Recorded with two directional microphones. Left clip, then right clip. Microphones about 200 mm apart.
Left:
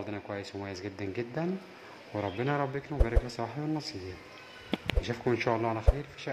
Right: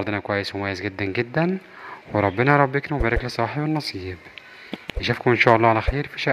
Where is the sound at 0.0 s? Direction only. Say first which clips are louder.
Right 14 dB; 25° right (ahead or behind).